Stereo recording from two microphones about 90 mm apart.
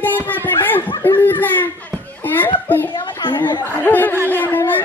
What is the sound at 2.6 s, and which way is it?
Speech, 20° left (ahead or behind).